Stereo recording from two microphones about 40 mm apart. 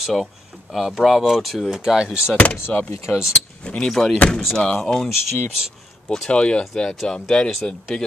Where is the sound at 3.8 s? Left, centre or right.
Centre.